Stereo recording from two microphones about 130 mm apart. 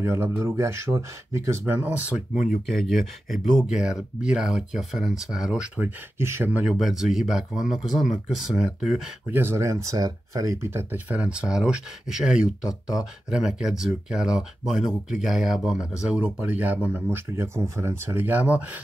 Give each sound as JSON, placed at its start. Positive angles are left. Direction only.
{"t": 0.0, "sound": "speech", "side_deg": -20}
{"t": 2.3, "sound": "speech", "side_deg": 85}
{"t": 2.6, "sound": "speech", "side_deg": 0}
{"t": 6.1, "sound": "speech", "side_deg": -20}
{"t": 6.7, "sound": "speech", "side_deg": -5}
{"t": 9.3, "sound": "speech", "side_deg": -15}